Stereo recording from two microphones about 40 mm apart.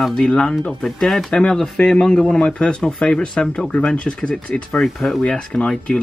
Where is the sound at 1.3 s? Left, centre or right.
Left.